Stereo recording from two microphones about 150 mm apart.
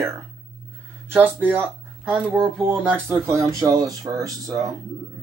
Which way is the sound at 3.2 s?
20° right (ahead or behind).